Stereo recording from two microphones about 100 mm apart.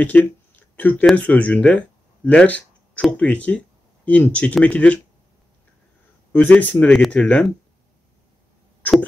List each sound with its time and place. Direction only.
0.0 s speech: 15° left (ahead or behind)
6.3 s speech: 15° left (ahead or behind)